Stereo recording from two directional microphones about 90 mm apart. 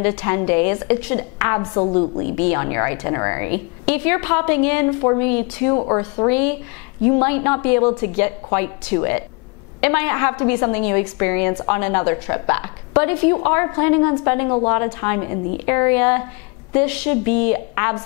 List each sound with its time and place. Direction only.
0.0 s a woman's voice: 15° left (ahead or behind)
5.3 s a woman's voice: 15° left (ahead or behind)
5.8 s a woman's voice: 30° left (ahead or behind)